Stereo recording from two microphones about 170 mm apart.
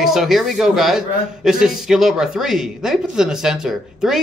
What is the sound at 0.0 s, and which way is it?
A man's voice, centre (ahead or behind).